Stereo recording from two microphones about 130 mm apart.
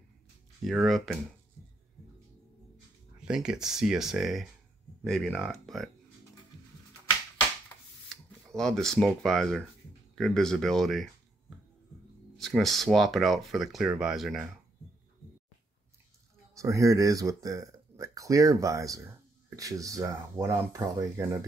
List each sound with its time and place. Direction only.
0.7 s speech: centre (ahead or behind)
3.2 s speech: 5° right (ahead or behind)
8.1 s speech: 5° left (ahead or behind)
12.4 s speech: centre (ahead or behind)
16.5 s speech: 25° right (ahead or behind)